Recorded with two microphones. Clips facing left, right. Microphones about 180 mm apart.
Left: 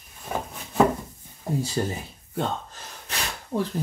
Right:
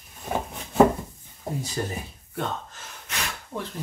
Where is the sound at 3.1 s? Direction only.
35° left (ahead or behind).